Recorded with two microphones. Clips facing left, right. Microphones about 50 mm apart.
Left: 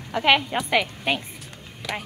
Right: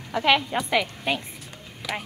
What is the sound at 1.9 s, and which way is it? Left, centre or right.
Speech, centre.